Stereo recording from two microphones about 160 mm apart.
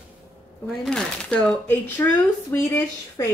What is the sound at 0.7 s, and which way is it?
Speech, 5° left (ahead or behind).